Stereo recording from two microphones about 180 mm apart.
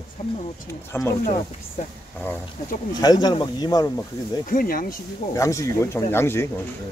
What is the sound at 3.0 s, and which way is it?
Speech, 20° left (ahead or behind).